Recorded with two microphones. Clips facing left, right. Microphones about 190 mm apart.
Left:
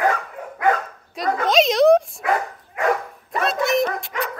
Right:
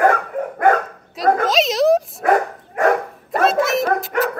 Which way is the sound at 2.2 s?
45° right (ahead or behind).